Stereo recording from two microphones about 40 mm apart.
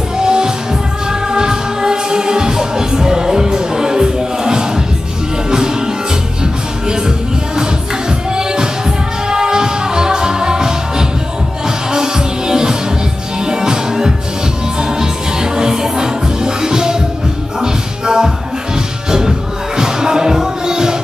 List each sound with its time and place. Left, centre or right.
0.2 s music: centre